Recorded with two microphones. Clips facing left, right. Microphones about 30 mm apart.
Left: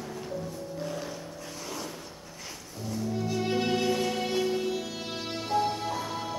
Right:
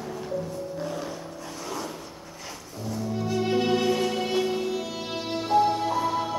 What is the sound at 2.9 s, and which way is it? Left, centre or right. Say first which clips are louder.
Music: right 3 dB; centre.